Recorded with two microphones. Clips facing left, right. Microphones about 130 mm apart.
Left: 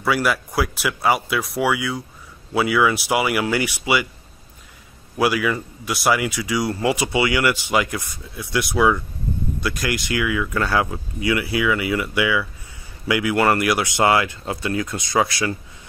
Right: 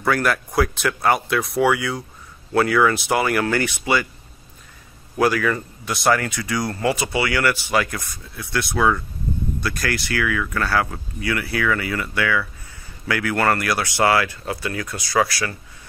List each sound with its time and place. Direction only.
0.0 s speech: 5° left (ahead or behind)
5.1 s speech: 10° left (ahead or behind)